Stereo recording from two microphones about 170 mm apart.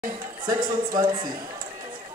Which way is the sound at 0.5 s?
25° right (ahead or behind).